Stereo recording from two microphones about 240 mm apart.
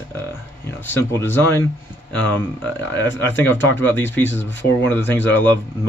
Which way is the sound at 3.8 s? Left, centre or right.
Centre.